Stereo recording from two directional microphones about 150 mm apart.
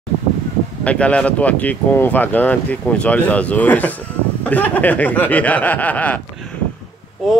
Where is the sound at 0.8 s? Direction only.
10° left (ahead or behind).